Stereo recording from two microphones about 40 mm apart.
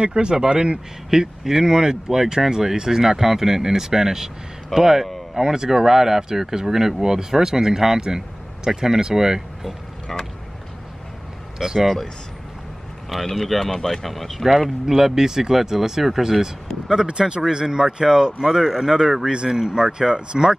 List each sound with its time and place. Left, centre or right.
0.0 s speech: right
10.1 s speech: centre
11.5 s speech: centre
13.1 s speech: centre